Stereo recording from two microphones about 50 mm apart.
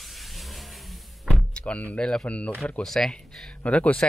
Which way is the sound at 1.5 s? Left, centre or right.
Left.